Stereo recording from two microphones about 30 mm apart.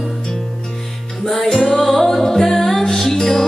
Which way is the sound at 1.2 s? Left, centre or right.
Centre.